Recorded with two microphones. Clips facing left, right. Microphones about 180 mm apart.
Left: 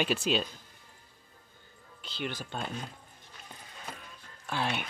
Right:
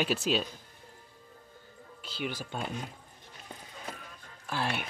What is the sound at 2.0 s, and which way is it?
Speech, 5° right (ahead or behind).